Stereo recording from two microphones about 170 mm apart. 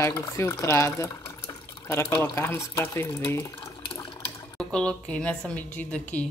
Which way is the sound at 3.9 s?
30° left (ahead or behind).